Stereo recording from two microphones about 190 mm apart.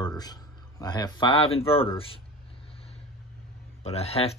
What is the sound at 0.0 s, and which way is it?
Speech, 20° left (ahead or behind).